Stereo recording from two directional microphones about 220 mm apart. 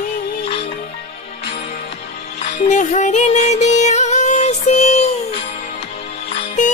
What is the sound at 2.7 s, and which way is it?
Music, 35° left (ahead or behind).